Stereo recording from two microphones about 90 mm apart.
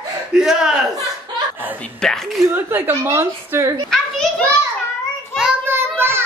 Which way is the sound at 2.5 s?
20° right (ahead or behind).